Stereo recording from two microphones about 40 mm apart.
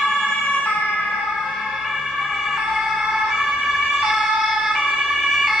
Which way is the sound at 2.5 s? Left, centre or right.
Centre.